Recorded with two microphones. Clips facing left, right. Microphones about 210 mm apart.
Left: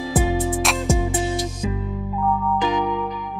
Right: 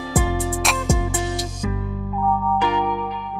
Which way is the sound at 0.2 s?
20° left (ahead or behind).